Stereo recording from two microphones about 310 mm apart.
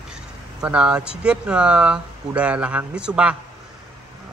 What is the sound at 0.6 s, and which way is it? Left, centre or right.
Speech, centre.